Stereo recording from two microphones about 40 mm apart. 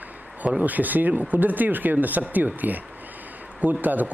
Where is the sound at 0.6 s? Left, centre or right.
Right.